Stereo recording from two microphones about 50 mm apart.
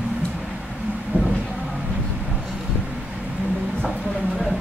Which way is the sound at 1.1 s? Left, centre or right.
Right.